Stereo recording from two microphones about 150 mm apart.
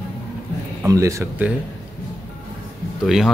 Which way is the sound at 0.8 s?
20° right (ahead or behind).